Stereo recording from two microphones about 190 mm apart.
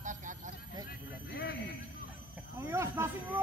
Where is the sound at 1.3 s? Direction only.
60° left (ahead or behind).